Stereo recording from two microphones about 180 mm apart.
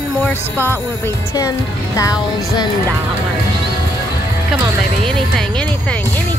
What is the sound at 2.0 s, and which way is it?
Music, 20° left (ahead or behind).